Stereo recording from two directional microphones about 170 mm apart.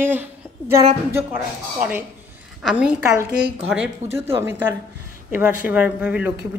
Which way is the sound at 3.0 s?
15° right (ahead or behind).